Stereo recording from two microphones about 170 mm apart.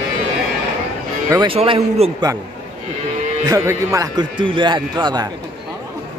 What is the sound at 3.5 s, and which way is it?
Speech, 15° right (ahead or behind).